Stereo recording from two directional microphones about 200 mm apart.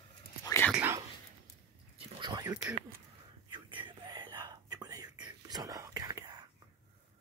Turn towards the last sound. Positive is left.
turn(degrees=-20)  # may be behind; listen again after turning